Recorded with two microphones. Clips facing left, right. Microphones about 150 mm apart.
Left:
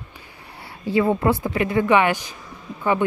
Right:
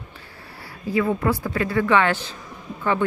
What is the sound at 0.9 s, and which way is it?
A woman's voice, 30° left (ahead or behind).